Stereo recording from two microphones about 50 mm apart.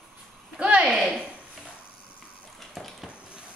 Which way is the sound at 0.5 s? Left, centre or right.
Right.